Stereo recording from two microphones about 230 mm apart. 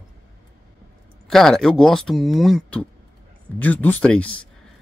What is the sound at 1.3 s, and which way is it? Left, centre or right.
Speech, centre.